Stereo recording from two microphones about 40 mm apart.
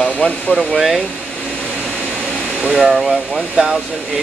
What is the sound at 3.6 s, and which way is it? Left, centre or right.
Speech, right.